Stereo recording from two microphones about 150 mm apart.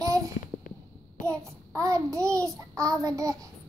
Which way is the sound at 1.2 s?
20° right (ahead or behind).